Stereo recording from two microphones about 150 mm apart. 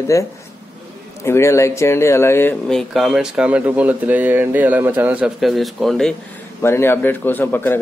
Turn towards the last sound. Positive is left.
turn(degrees=15)  # may be behind; listen again after turning